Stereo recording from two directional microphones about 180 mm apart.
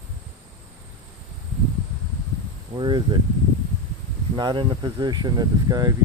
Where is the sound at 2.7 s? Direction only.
25° right (ahead or behind).